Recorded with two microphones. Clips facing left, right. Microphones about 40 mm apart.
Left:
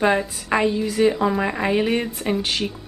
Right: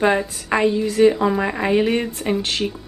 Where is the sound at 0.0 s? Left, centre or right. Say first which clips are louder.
Right 1 dB; centre.